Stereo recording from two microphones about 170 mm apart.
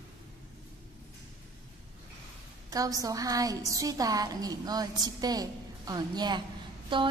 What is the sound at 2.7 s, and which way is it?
A woman's voice, 20° right (ahead or behind).